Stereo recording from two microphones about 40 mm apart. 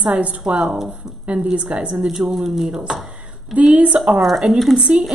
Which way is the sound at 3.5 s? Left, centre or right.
Right.